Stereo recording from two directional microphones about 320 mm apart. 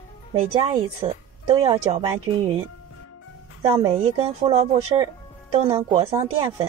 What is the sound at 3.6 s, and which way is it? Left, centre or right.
Speech, centre.